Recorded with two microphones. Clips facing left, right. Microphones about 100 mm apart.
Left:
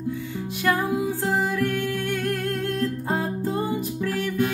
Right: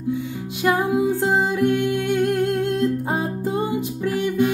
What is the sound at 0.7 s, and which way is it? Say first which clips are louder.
Music: right 4 dB; 15° right (ahead or behind).